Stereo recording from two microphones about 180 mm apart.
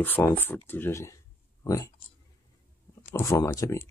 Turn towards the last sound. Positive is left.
turn(degrees=15)  # may be behind; listen again after turning